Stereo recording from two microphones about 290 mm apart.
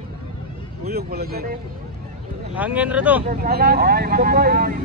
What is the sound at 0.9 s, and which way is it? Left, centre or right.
Vehicle, right.